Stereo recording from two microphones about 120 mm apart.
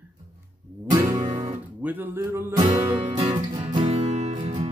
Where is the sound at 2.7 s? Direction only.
45° right (ahead or behind); by 4.7 s 65° right (ahead or behind).